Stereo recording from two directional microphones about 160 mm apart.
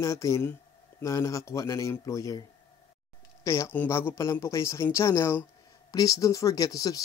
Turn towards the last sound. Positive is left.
turn(degrees=25)  # may be behind; listen again after turning